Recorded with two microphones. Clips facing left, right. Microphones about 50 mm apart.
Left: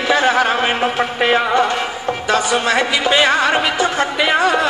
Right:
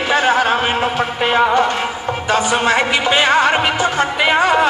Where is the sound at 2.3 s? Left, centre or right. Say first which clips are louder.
Right 1 dB; right.